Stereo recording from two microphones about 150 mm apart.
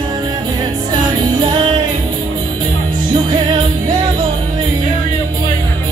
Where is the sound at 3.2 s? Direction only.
30° right (ahead or behind).